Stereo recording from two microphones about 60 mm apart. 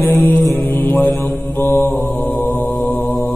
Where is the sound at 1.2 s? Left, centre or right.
Left.